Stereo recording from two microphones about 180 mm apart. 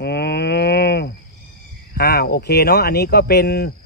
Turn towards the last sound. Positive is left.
turn(degrees=65)  # may be behind; listen again after turning